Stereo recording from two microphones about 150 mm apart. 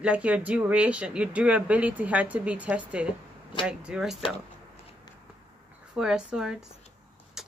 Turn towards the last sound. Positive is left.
turn(degrees=-5)  # may be behind; listen again after turning